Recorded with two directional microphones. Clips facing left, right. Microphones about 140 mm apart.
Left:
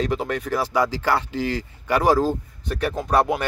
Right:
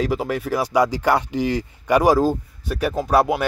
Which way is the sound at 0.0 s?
5° right (ahead or behind).